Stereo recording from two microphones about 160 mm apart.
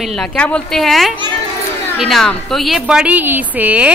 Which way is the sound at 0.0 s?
5° left (ahead or behind).